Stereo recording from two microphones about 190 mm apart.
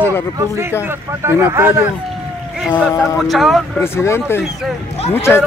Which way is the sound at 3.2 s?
Centre (ahead or behind).